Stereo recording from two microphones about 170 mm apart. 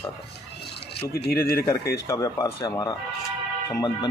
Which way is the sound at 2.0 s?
20° left (ahead or behind).